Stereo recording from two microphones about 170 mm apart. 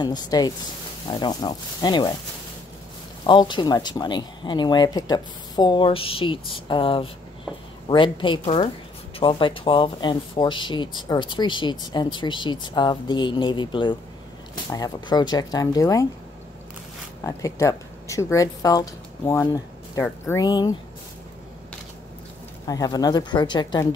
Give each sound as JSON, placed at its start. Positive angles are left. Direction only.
{"t": 0.0, "sound": "speech", "side_deg": 25}
{"t": 3.3, "sound": "speech", "side_deg": 25}
{"t": 17.2, "sound": "speech", "side_deg": 20}
{"t": 22.7, "sound": "speech", "side_deg": 20}